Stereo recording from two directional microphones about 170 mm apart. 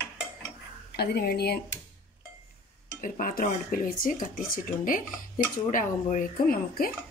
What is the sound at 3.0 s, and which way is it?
Speech, 55° left (ahead or behind).